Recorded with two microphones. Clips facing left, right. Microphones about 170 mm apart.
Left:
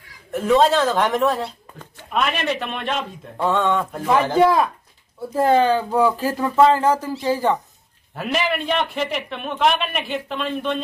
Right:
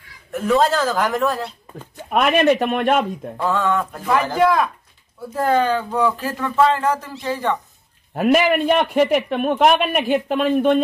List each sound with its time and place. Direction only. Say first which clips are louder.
0.3 s speech: left 1 dB; centre (ahead or behind)
2.0 s speech: right 7 dB; 50° right (ahead or behind)
3.7 s speech: even; centre (ahead or behind)
4.1 s speech: left 1 dB; 20° left (ahead or behind); by 7.5 s 35° left (ahead or behind)
8.1 s speech: right 7 dB; 50° right (ahead or behind)